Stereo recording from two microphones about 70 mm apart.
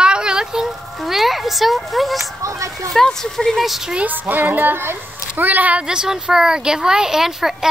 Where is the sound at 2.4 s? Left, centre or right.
Right.